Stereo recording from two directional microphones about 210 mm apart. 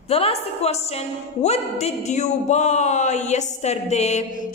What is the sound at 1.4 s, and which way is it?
Speech, 30° left (ahead or behind).